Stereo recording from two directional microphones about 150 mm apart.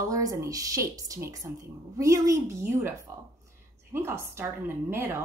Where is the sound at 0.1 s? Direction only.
25° right (ahead or behind).